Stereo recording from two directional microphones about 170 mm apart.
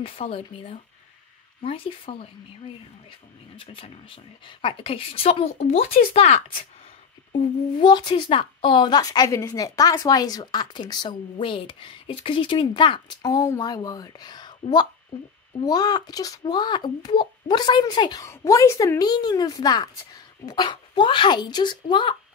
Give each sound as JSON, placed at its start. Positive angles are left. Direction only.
{"t": 0.0, "sound": "speech", "side_deg": 35}
{"t": 3.5, "sound": "speech", "side_deg": 35}
{"t": 7.3, "sound": "speech", "side_deg": 25}